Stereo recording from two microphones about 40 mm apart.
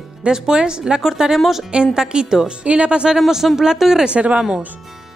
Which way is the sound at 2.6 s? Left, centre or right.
Right.